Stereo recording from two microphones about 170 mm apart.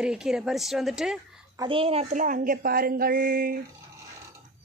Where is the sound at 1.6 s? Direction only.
30° right (ahead or behind); by 3.5 s 60° right (ahead or behind).